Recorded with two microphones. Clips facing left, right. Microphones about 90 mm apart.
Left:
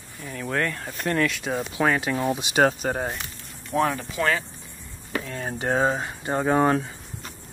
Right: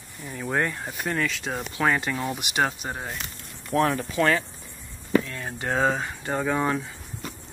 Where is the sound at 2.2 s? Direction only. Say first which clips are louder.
Left 8 dB; 30° left (ahead or behind).